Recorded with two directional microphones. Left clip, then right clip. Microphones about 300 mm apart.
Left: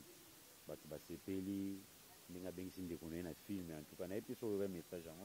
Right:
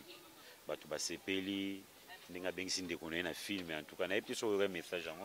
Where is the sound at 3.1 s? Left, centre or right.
Centre.